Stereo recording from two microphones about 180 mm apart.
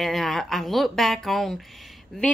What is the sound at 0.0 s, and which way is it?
Speech, centre (ahead or behind).